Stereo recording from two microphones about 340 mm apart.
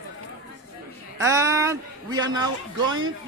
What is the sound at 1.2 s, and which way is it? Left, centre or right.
Speech, centre.